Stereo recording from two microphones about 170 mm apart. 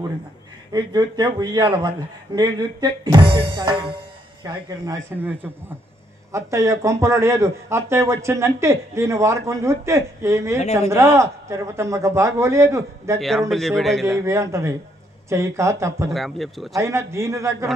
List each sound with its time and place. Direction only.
0.7 s speech: 25° right (ahead or behind)
6.3 s speech: 20° right (ahead or behind)
13.2 s speech: centre (ahead or behind)
14.2 s speech: 15° right (ahead or behind)
16.1 s speech: centre (ahead or behind)
16.7 s speech: 15° right (ahead or behind)